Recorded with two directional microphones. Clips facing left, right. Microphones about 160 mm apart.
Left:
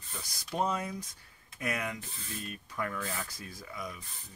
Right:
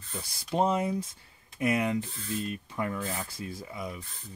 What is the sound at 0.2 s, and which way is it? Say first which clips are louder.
Speech: right 5 dB; 30° right (ahead or behind).